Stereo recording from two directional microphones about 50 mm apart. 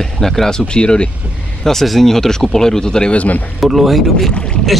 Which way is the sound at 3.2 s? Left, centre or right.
Left.